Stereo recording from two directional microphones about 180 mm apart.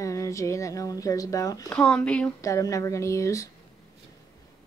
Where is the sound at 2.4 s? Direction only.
20° left (ahead or behind).